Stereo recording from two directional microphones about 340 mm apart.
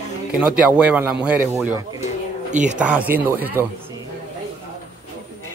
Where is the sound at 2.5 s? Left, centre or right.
Right.